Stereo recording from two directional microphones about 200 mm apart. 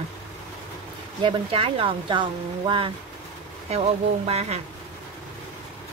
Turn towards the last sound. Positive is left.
turn(degrees=-30)  # may be behind; listen again after turning